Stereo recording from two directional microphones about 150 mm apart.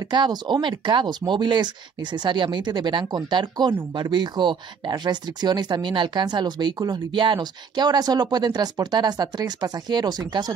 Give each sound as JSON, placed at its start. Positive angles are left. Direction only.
{"t": 0.1, "sound": "speech", "side_deg": -30}